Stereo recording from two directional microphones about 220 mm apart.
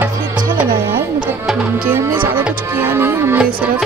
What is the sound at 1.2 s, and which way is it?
Speech, 10° right (ahead or behind).